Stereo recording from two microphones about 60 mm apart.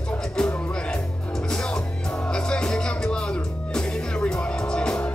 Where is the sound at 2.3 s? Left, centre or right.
Centre.